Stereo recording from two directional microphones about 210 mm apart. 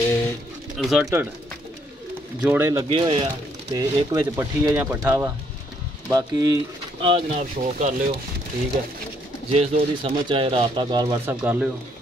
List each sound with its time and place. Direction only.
0.7 s speech: 5° right (ahead or behind)
2.4 s speech: 10° right (ahead or behind)
2.9 s speech: 25° right (ahead or behind)
3.7 s speech: 15° right (ahead or behind); by 8.2 s 35° right (ahead or behind)
9.5 s speech: 30° right (ahead or behind); by 11.7 s 10° right (ahead or behind)